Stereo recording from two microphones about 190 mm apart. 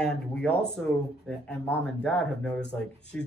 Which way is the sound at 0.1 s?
5° left (ahead or behind).